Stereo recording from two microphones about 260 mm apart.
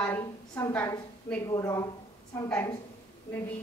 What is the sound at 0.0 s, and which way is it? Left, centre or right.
A woman's voice, centre.